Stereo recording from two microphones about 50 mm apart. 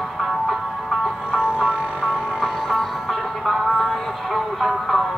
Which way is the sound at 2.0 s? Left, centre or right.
Centre.